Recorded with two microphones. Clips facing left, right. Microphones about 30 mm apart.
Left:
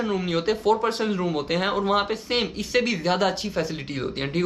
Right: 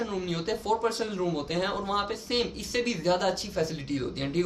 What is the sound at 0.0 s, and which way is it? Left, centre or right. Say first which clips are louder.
A woman's voice: left 7 dB; left.